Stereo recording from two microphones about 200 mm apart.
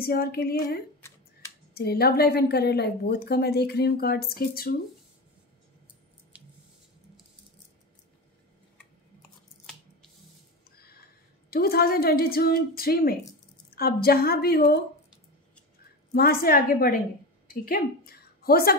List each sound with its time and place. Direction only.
0.0 s a woman's voice: 50° left (ahead or behind)
11.5 s a woman's voice: 50° left (ahead or behind)
16.1 s a woman's voice: 50° left (ahead or behind)